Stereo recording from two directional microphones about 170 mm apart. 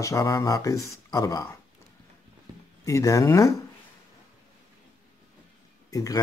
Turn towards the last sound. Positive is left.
turn(degrees=20)  # may be behind; listen again after turning